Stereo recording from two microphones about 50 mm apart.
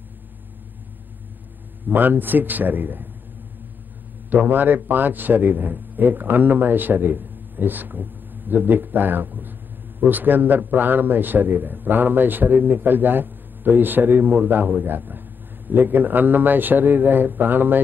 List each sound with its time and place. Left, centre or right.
1.9 s a man's voice: right
4.3 s a man's voice: right